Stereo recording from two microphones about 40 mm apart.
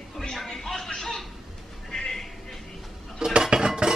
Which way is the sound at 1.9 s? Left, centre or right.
Centre.